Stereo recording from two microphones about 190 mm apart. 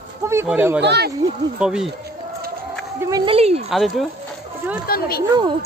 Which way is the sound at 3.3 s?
30° right (ahead or behind).